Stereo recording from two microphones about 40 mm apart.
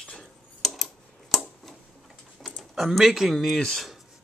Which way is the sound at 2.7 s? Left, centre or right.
Centre.